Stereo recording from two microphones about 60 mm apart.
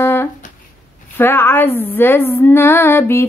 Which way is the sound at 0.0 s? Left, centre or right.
Left.